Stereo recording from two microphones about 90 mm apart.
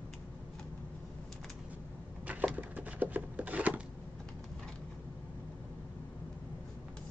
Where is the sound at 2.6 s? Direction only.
20° right (ahead or behind).